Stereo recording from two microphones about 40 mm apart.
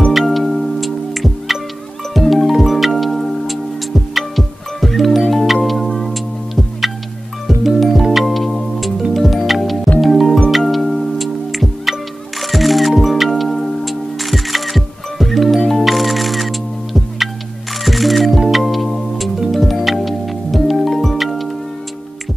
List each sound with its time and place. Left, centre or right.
0.1 s music: centre